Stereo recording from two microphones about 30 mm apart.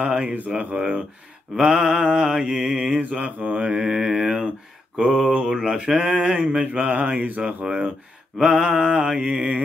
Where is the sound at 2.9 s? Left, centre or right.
Right.